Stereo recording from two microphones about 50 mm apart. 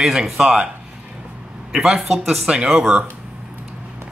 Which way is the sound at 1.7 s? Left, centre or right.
Centre.